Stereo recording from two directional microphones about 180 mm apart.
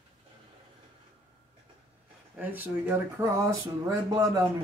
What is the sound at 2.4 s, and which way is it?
Speech, 10° right (ahead or behind).